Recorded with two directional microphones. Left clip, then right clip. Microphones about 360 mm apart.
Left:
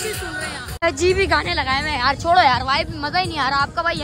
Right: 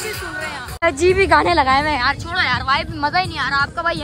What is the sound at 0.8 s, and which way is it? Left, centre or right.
Speech, centre.